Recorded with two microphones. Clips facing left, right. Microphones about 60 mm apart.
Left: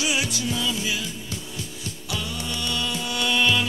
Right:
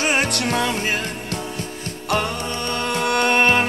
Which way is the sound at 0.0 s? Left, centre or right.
Right.